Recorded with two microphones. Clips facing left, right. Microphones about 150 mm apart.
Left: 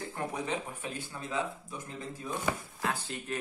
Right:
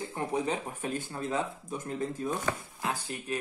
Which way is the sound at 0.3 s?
40° right (ahead or behind).